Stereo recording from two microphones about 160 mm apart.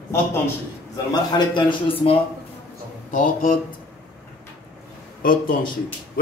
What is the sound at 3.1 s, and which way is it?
Speech, 55° left (ahead or behind).